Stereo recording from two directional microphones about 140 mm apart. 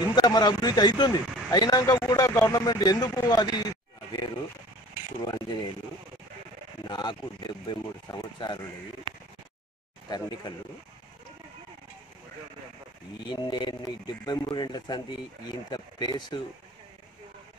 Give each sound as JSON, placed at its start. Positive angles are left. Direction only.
{"t": 0.1, "sound": "speech", "side_deg": 30}
{"t": 5.2, "sound": "speech", "side_deg": 30}
{"t": 6.9, "sound": "speech", "side_deg": 35}
{"t": 10.0, "sound": "speech", "side_deg": 30}
{"t": 13.3, "sound": "speech", "side_deg": 35}